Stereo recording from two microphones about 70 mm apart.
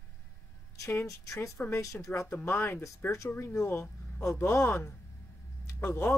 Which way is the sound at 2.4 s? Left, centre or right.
Left.